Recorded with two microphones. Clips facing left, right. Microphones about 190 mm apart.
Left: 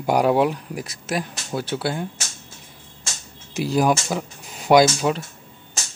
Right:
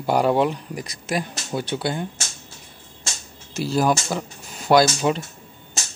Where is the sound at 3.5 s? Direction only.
15° left (ahead or behind).